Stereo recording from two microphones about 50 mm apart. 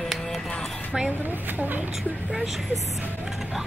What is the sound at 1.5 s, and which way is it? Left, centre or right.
Speech, right.